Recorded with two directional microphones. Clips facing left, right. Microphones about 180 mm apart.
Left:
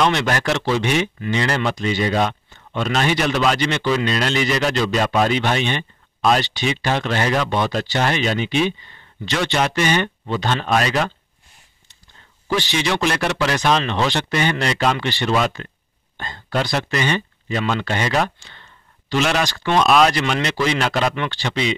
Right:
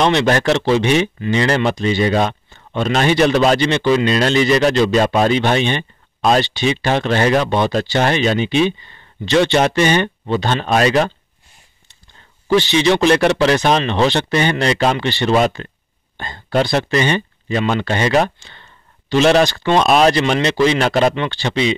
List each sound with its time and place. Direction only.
0.0 s speech: 25° right (ahead or behind)
12.5 s speech: 25° right (ahead or behind)